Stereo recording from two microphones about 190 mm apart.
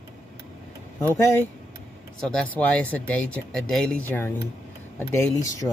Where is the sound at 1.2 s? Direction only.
15° left (ahead or behind).